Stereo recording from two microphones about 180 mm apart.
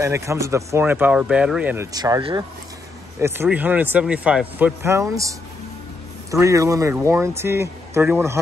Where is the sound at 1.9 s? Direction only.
20° right (ahead or behind).